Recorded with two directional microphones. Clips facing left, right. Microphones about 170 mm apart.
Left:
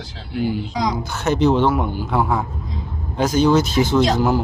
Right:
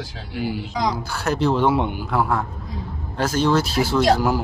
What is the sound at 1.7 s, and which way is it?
Speech, 25° right (ahead or behind).